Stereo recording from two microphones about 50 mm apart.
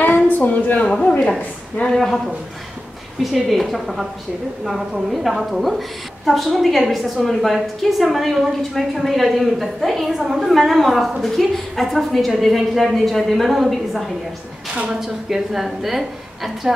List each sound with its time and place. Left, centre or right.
0.0 s a sound: left
0.8 s a woman's voice: centre
3.2 s a woman's voice: centre
5.1 s a woman's voice: centre